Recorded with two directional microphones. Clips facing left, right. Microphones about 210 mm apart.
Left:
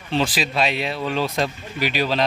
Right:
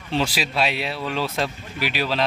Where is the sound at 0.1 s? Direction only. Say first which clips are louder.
Left 2 dB; 10° right (ahead or behind).